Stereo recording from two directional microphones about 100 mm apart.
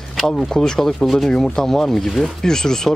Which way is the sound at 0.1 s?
5° left (ahead or behind).